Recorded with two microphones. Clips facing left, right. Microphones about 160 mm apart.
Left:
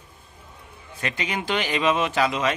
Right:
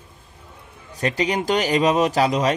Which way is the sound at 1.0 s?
40° right (ahead or behind).